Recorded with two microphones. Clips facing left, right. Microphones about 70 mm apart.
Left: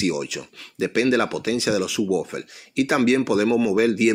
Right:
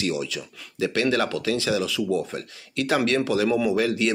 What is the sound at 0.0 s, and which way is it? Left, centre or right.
Speech, left.